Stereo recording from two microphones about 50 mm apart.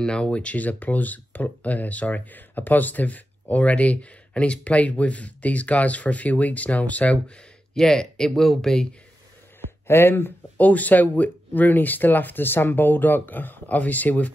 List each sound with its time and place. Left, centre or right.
0.0 s speech: left
7.7 s speech: centre
9.8 s speech: left
10.7 s speech: left